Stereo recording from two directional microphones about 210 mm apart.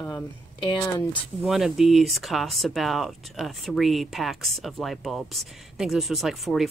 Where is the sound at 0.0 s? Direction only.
20° left (ahead or behind).